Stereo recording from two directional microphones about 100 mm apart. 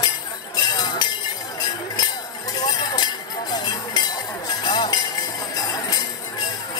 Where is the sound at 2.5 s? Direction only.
40° left (ahead or behind).